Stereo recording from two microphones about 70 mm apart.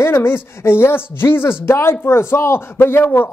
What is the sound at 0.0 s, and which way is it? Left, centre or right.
A man's voice, left.